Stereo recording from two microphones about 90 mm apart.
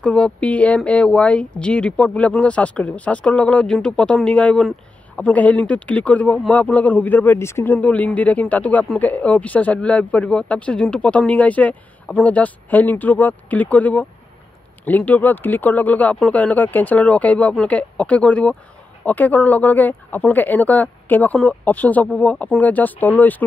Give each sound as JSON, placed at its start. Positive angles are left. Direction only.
{"t": 0.0, "sound": "speech", "side_deg": 15}